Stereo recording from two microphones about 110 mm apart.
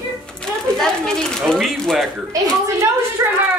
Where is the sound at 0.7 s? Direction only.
5° left (ahead or behind).